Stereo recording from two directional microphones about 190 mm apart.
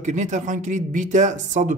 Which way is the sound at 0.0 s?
40° right (ahead or behind).